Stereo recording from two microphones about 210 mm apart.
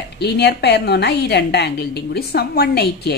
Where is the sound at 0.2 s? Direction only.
50° left (ahead or behind).